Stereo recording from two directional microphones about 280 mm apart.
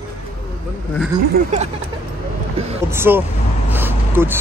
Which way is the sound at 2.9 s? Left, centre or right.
Centre.